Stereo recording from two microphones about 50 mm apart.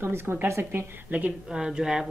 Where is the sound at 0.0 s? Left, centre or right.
Right.